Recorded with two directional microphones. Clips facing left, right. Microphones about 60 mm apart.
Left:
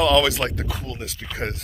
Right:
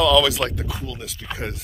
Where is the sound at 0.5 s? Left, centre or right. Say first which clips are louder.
Even; left.